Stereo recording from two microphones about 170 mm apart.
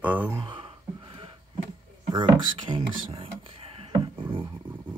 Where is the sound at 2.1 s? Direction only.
30° right (ahead or behind).